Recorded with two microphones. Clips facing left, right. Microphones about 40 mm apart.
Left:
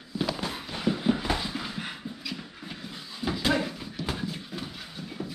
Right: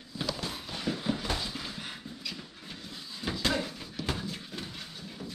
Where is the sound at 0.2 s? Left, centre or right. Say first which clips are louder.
Left 4 dB; centre.